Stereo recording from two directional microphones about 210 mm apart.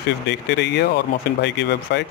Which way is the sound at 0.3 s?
55° left (ahead or behind).